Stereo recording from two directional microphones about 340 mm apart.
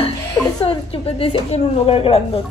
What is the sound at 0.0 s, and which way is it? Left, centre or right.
Speech, centre.